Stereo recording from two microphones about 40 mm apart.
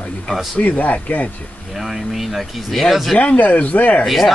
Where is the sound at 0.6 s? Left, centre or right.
Left.